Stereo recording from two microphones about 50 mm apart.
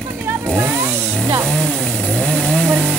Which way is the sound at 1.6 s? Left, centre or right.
Centre.